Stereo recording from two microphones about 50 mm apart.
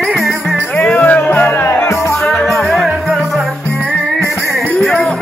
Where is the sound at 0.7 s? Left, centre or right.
Left.